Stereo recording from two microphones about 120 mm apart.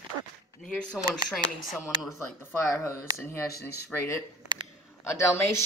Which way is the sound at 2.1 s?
25° left (ahead or behind).